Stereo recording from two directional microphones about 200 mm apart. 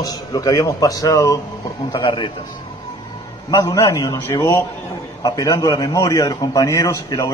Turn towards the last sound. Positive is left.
turn(degrees=15)  # may be behind; listen again after turning